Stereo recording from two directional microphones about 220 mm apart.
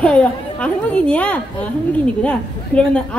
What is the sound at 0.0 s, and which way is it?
A woman's voice, 5° left (ahead or behind).